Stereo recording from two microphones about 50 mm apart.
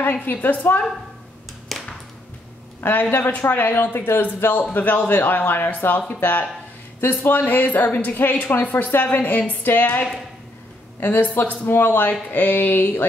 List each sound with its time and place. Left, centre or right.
0.0 s speech: left
1.7 s a sound: centre
2.8 s speech: left
4.7 s speech: left
8.6 s speech: left
8.9 s speech: left